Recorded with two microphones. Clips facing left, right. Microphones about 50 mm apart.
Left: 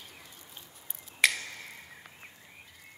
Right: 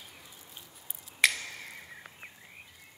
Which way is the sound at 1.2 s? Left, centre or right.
Centre.